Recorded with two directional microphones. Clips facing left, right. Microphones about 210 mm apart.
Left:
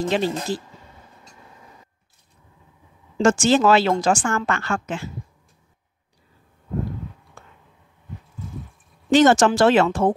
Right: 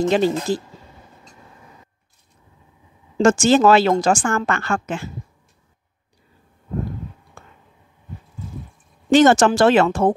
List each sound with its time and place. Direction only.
0.1 s speech: 45° right (ahead or behind)
3.2 s speech: 45° right (ahead or behind)
9.1 s speech: 55° right (ahead or behind)